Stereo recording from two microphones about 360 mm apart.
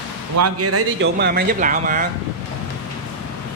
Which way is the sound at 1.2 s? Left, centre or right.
Right.